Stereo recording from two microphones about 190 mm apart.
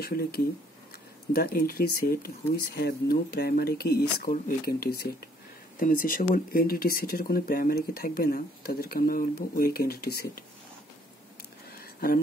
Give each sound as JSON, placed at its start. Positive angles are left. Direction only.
{"t": 0.0, "sound": "speech", "side_deg": 50}